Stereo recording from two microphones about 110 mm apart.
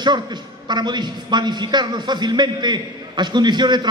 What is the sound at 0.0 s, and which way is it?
A man's voice, 40° right (ahead or behind).